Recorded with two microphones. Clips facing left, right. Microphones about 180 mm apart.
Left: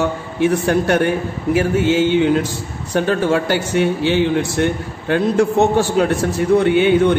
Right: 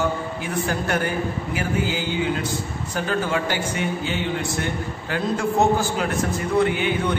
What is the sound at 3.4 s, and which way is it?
A man's voice, 80° left.